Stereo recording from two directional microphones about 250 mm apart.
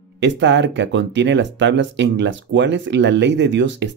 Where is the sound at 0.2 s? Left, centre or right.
Right.